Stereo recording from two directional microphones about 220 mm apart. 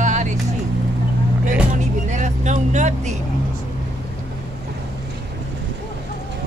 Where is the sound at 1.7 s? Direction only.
35° right (ahead or behind).